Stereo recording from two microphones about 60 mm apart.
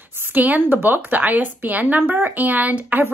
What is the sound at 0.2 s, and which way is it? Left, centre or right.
Speech, right.